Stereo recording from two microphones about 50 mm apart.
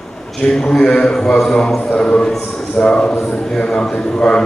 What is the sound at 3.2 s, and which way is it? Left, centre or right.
A man's voice, centre.